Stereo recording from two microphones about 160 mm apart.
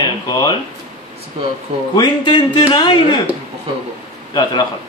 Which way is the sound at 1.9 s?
30° left (ahead or behind).